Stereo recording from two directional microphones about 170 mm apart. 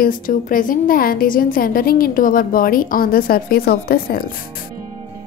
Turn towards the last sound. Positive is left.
turn(degrees=60)  # may be behind; listen again after turning